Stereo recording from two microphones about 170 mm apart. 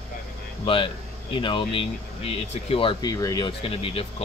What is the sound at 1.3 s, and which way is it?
Speech, 30° left (ahead or behind).